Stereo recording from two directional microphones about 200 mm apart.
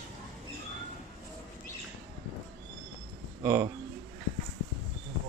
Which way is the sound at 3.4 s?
10° right (ahead or behind).